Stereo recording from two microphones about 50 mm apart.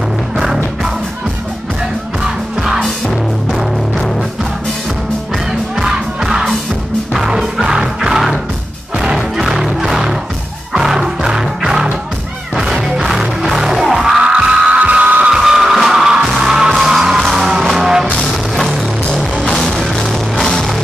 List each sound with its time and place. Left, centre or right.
2.2 s music: centre
2.8 s music: centre
5.8 s music: centre
14.8 s music: right
15.3 s music: centre
19.3 s music: centre
19.6 s music: centre